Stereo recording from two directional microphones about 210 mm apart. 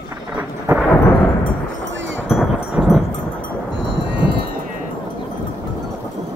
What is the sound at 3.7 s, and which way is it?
Music, 60° right (ahead or behind).